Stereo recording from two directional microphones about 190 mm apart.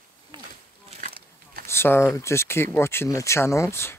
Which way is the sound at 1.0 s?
50° right (ahead or behind).